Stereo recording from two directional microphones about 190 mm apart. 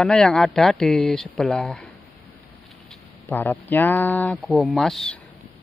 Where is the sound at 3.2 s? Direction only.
10° left (ahead or behind).